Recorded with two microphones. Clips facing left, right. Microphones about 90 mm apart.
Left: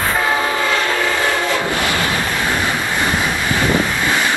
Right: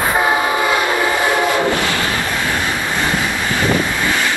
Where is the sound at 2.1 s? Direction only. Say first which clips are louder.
Even; 20° left (ahead or behind).